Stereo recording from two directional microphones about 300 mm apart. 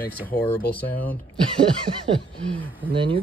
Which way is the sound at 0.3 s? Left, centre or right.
Centre.